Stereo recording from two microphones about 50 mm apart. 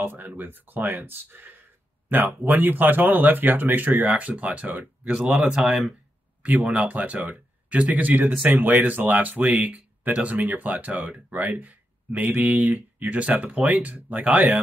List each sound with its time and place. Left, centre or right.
0.0 s speech: right
5.1 s speech: centre
6.4 s speech: right